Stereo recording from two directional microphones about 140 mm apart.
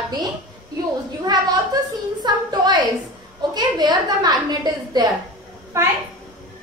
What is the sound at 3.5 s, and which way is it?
A woman's voice, 30° right (ahead or behind).